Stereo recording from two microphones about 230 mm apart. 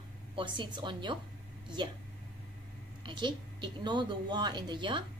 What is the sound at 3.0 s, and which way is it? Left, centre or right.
A woman's voice, centre.